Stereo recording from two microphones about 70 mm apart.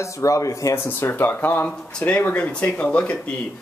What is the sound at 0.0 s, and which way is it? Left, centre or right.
Speech, left.